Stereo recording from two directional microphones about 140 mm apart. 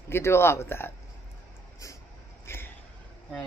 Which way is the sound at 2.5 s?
15° left (ahead or behind).